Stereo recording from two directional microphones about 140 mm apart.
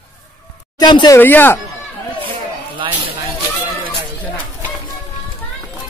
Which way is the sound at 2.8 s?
35° right (ahead or behind).